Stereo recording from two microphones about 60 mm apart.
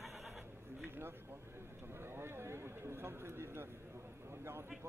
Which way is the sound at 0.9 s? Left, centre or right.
Right.